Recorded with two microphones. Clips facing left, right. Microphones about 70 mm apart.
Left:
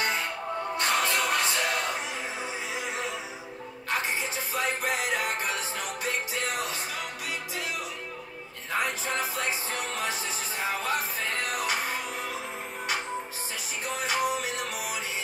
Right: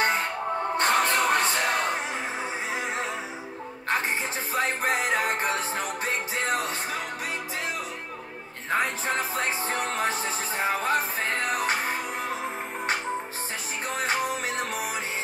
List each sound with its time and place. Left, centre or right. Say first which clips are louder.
0.0 s music: right 4 dB; right
4.6 s music: right 3 dB; right
8.6 s music: right 3 dB; right
13.9 s music: even; right